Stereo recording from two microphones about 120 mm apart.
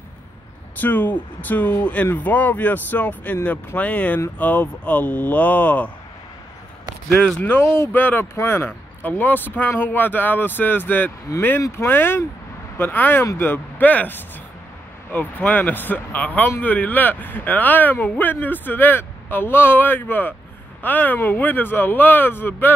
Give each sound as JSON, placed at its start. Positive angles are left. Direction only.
{"t": 0.7, "sound": "speech", "side_deg": 15}
{"t": 7.1, "sound": "speech", "side_deg": 5}